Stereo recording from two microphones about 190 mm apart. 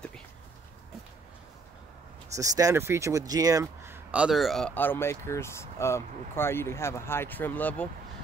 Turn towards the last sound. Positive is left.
turn(degrees=10)  # may be behind; listen again after turning